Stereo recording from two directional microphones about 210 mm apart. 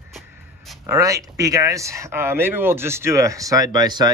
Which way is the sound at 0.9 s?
15° right (ahead or behind).